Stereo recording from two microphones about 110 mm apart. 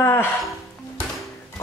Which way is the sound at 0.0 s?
20° left (ahead or behind).